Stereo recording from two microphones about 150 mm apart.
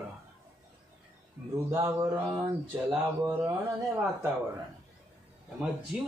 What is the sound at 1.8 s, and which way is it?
Speech, 15° right (ahead or behind).